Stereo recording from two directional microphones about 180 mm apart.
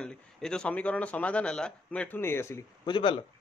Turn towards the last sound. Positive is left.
turn(degrees=30)  # may be behind; listen again after turning